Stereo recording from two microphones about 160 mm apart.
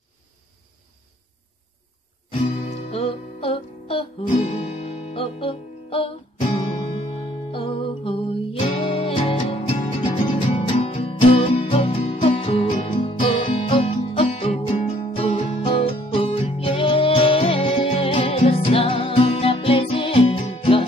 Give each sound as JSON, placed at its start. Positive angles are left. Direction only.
{"t": 2.4, "sound": "music", "side_deg": 40}